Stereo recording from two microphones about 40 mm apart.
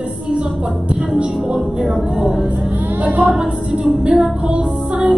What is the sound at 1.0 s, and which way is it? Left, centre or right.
Speech, right.